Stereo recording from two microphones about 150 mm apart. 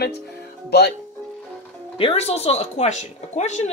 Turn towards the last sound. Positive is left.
turn(degrees=50)  # may be behind; listen again after turning